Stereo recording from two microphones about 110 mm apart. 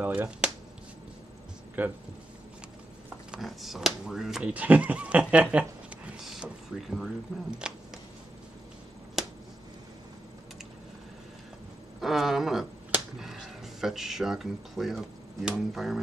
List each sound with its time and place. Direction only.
0.0 s speech: 15° right (ahead or behind)
1.8 s speech: 15° right (ahead or behind)
3.1 s speech: 5° right (ahead or behind)
6.1 s a sound: 5° right (ahead or behind)
7.5 s shuffling cards: 5° right (ahead or behind)
9.2 s finger snapping: centre (ahead or behind)
12.0 s speech: centre (ahead or behind)